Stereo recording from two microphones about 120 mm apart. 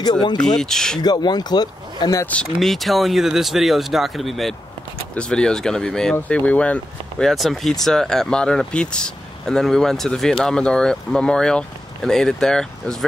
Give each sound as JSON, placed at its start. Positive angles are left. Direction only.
{"t": 0.0, "sound": "speech", "side_deg": 35}
{"t": 0.6, "sound": "speech", "side_deg": 5}
{"t": 1.0, "sound": "speech", "side_deg": 35}
{"t": 2.2, "sound": "speech", "side_deg": 5}